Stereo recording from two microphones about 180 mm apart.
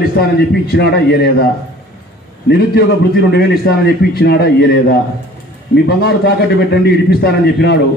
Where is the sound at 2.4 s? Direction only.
65° left (ahead or behind).